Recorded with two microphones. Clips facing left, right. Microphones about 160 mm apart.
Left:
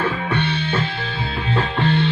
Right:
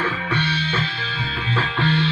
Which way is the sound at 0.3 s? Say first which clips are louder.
Left 3 dB; 55° left (ahead or behind).